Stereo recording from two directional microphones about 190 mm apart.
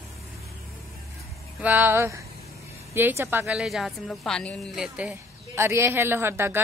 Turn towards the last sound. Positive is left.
turn(degrees=-10)  # may be behind; listen again after turning